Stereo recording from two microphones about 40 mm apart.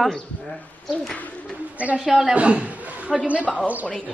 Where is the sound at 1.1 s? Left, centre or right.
Left.